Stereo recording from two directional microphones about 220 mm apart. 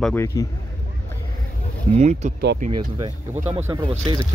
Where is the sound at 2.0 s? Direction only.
30° right (ahead or behind).